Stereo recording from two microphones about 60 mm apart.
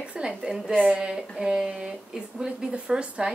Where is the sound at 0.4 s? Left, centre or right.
Centre.